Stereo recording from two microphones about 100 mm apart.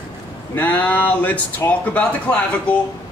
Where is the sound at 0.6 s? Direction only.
15° left (ahead or behind).